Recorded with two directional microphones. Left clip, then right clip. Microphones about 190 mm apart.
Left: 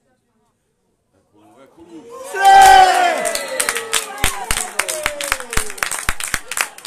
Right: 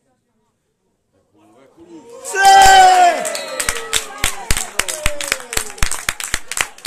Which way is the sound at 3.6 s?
55° right (ahead or behind).